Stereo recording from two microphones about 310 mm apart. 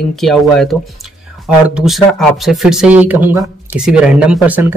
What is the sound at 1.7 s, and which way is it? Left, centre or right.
Speech, centre.